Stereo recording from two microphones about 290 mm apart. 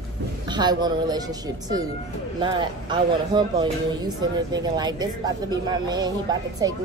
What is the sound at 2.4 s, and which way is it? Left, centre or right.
Speech, centre.